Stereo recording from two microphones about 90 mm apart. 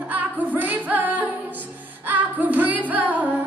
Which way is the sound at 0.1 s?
20° right (ahead or behind).